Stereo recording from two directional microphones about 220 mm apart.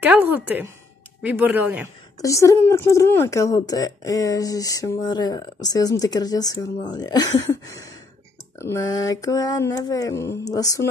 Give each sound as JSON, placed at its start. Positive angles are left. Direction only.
{"t": 0.0, "sound": "a woman's voice", "side_deg": -5}
{"t": 2.1, "sound": "a woman's voice", "side_deg": 15}